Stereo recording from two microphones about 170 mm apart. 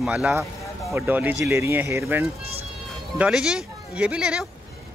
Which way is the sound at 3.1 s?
5° right (ahead or behind).